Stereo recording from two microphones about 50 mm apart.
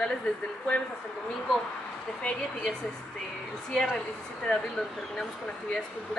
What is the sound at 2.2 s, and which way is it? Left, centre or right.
Speech, left.